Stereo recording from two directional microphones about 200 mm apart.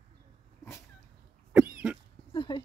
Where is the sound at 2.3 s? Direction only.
25° left (ahead or behind).